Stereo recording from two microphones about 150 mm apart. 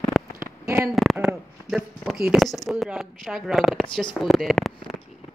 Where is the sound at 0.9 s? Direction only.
Centre (ahead or behind).